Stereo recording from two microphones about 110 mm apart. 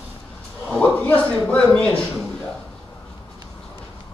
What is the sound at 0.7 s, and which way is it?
Speech, 15° left (ahead or behind).